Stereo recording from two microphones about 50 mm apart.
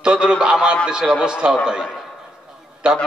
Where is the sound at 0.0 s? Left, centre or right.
Centre.